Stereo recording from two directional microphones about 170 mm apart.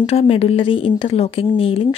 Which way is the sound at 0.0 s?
35° left (ahead or behind).